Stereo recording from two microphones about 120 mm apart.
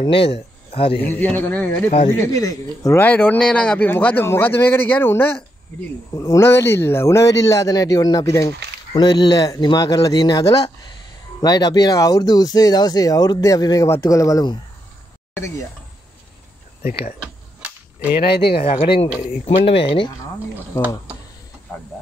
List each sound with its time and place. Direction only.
0.0 s speech: 50° left (ahead or behind)
1.0 s speech: 15° left (ahead or behind)
2.1 s speech: 30° left (ahead or behind)
3.0 s speech: 15° left (ahead or behind); by 10.4 s 35° left (ahead or behind)
11.4 s speech: 35° left (ahead or behind)
17.2 s cap gun: 10° right (ahead or behind)
18.6 s speech: 55° left (ahead or behind)
19.0 s speech: 15° right (ahead or behind)
19.6 s speech: 50° left (ahead or behind)